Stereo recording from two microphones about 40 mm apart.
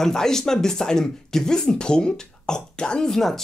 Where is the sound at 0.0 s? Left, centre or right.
Centre.